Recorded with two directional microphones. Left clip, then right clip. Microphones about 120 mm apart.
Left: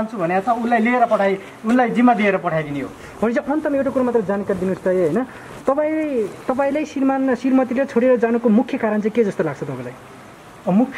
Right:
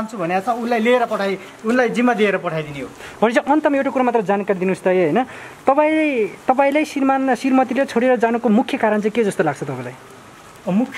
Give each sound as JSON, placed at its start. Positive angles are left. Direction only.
{"t": 0.2, "sound": "speech", "side_deg": -20}
{"t": 3.2, "sound": "a man's voice", "side_deg": -45}